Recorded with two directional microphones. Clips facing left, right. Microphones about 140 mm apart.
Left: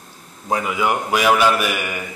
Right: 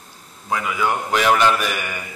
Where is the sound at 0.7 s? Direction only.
10° left (ahead or behind).